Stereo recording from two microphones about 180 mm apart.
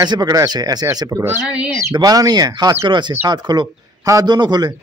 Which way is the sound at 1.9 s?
20° right (ahead or behind).